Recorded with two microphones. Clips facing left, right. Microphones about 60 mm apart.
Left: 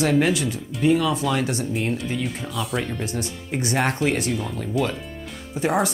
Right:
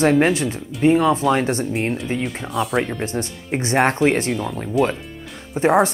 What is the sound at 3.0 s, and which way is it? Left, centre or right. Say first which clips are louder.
Speech: right 3 dB; right.